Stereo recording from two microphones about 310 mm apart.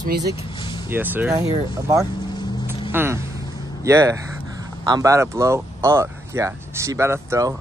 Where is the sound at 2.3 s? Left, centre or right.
Centre.